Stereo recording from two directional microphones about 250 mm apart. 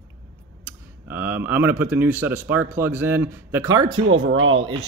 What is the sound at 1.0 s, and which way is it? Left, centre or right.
A man's voice, centre.